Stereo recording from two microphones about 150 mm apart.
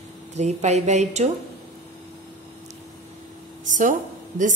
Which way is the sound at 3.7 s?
60° right (ahead or behind).